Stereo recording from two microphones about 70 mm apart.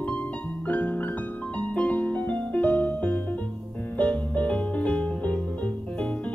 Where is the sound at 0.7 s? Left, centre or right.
Left.